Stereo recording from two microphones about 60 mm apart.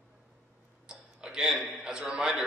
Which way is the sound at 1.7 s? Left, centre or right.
Centre.